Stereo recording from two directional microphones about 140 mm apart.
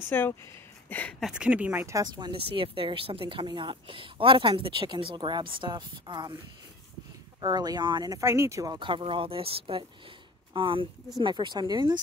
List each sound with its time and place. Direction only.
0.1 s speech: 15° left (ahead or behind)
1.2 s speech: 5° right (ahead or behind); by 2.3 s 25° right (ahead or behind)
2.5 s a woman's voice: 40° right (ahead or behind)
7.3 s speech: 30° right (ahead or behind)
8.7 s a woman's voice: 35° right (ahead or behind)